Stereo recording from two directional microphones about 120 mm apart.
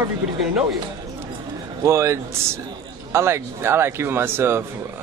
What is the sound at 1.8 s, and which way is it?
A man's voice, 25° right (ahead or behind).